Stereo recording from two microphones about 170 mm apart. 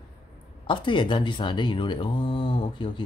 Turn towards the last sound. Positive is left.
turn(degrees=30)  # may be behind; listen again after turning